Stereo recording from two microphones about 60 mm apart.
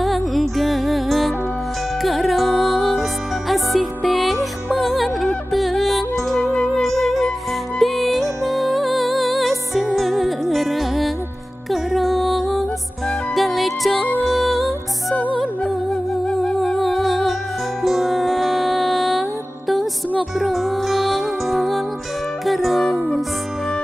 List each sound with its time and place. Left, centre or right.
0.0 s music: centre
20.3 s music: centre